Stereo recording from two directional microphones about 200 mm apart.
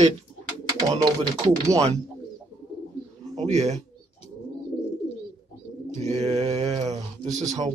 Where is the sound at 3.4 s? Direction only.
35° right (ahead or behind).